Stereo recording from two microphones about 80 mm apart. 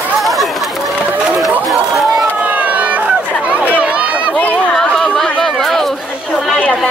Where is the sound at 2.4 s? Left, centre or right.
Centre.